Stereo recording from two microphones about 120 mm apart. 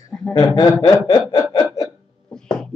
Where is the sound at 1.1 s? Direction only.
30° left (ahead or behind).